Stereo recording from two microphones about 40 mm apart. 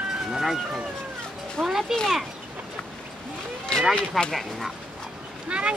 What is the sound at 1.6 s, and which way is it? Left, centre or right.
Speech, centre.